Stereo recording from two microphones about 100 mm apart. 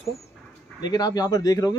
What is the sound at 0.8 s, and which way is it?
Speech, 40° left (ahead or behind).